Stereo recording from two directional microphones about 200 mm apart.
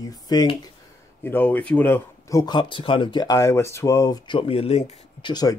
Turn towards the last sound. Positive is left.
turn(degrees=20)  # may be behind; listen again after turning